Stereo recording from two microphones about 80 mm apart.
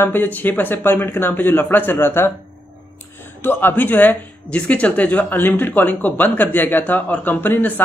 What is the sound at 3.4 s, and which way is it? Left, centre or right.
Speech, left.